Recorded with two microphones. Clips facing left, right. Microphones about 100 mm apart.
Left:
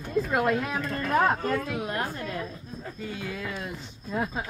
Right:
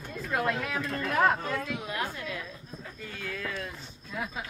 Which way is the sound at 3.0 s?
15° left (ahead or behind).